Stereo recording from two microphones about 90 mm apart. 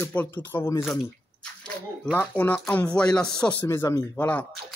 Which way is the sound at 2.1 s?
25° left (ahead or behind).